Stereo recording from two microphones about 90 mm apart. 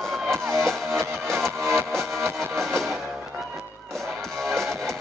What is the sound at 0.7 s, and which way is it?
Music, 5° left (ahead or behind).